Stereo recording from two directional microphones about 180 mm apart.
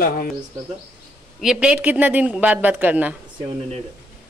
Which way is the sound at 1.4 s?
5° right (ahead or behind).